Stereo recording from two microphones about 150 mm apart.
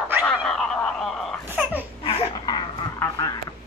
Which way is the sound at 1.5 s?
10° right (ahead or behind).